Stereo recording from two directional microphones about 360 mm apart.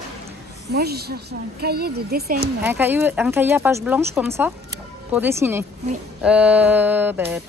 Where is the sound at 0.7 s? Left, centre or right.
Right.